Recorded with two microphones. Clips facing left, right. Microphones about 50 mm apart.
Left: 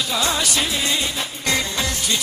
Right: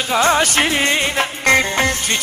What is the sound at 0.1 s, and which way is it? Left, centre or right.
Music, right.